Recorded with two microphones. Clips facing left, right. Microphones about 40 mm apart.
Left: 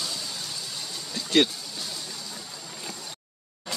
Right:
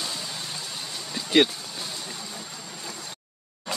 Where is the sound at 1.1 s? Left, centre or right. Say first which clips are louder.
Right 2 dB; centre.